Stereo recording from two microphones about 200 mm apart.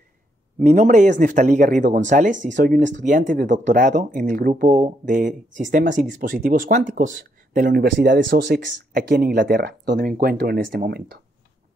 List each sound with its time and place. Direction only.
0.6 s speech: 40° right (ahead or behind)
7.5 s speech: 55° right (ahead or behind)